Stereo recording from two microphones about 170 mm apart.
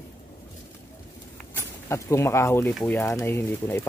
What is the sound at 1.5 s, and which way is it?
Speech, 15° left (ahead or behind).